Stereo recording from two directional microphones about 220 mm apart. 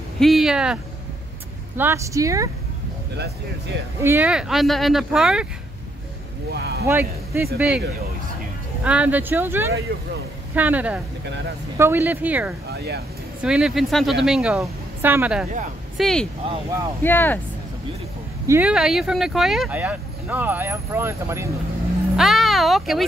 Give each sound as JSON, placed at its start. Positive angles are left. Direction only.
{"t": 0.2, "sound": "speech", "side_deg": 0}
{"t": 1.8, "sound": "speech", "side_deg": -10}
{"t": 4.0, "sound": "speech", "side_deg": -10}
{"t": 6.5, "sound": "speech", "side_deg": -50}
{"t": 6.9, "sound": "speech", "side_deg": -10}
{"t": 8.8, "sound": "speech", "side_deg": -5}
{"t": 12.7, "sound": "speech", "side_deg": -50}
{"t": 13.4, "sound": "a woman's voice", "side_deg": -5}
{"t": 18.5, "sound": "speech", "side_deg": -5}
{"t": 22.1, "sound": "speech", "side_deg": 0}